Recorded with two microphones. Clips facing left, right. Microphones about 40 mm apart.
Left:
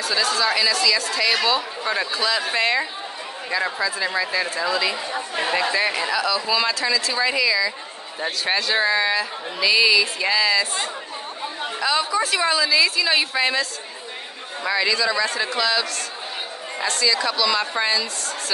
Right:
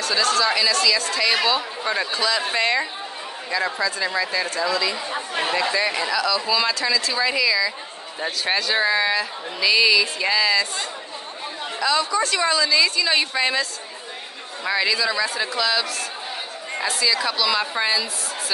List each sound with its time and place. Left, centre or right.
0.0 s speech: centre
5.1 s speech: right
5.5 s speech: centre
11.8 s speech: centre